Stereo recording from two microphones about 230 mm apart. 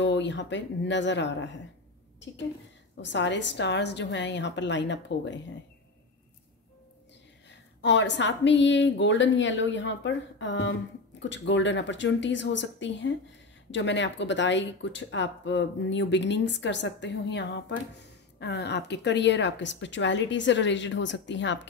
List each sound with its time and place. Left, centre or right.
0.0 s speech: left
3.0 s speech: left
7.8 s speech: left